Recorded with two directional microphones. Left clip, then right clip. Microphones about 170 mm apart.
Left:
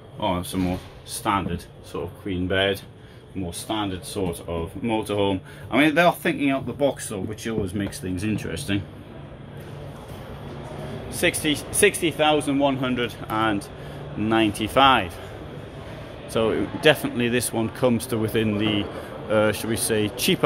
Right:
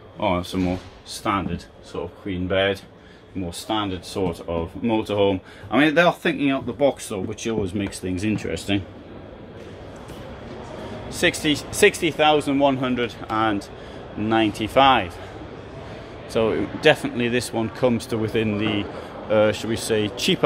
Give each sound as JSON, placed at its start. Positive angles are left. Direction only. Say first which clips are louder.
{"t": 0.2, "sound": "speech", "louder": "right 3 dB", "side_deg": -20}
{"t": 1.1, "sound": "speech", "louder": "even", "side_deg": 0}
{"t": 3.4, "sound": "speech", "louder": "right 2 dB", "side_deg": -20}
{"t": 11.1, "sound": "speech", "louder": "right 2 dB", "side_deg": -20}
{"t": 16.3, "sound": "speech", "louder": "right 1 dB", "side_deg": 0}